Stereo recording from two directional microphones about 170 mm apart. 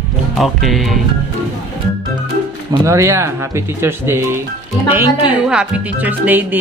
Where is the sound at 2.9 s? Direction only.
15° right (ahead or behind).